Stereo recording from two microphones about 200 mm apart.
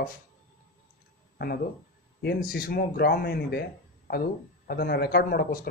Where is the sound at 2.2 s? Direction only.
50° left (ahead or behind).